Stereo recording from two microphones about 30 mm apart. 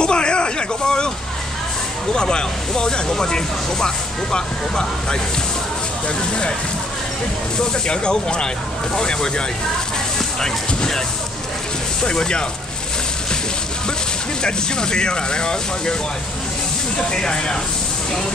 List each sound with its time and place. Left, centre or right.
0.0 s a sound: left
2.1 s speech: left
7.7 s speech: left
10.4 s speech: centre
12.0 s speech: left
14.4 s speech: left
17.1 s speech: left